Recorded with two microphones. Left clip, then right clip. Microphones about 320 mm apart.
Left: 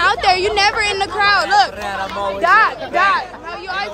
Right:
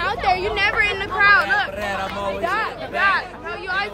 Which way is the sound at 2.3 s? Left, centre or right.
Left.